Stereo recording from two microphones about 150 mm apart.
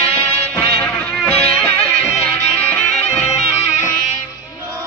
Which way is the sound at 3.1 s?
45° left (ahead or behind).